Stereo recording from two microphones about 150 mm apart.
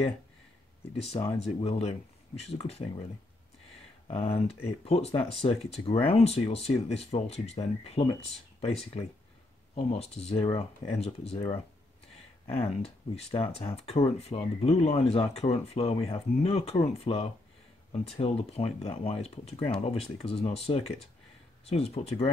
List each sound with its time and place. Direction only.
1.0 s speech: 40° left (ahead or behind)
4.1 s speech: 40° left (ahead or behind)